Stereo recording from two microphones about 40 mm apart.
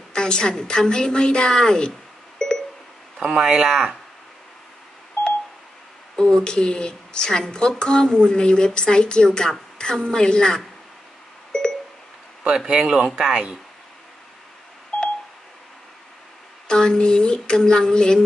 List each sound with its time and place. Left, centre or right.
0.1 s speech: left
1.9 s beep: centre
3.2 s speech: centre
3.6 s speech: centre
6.1 s speech: centre
12.4 s speech: right
16.6 s speech: centre